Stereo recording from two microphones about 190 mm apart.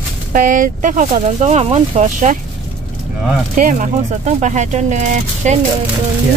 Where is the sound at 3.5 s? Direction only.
45° right (ahead or behind).